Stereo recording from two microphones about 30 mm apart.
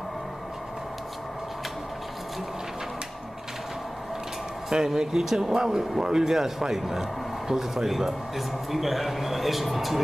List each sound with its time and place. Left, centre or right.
4.6 s speech: right
5.2 s speech: centre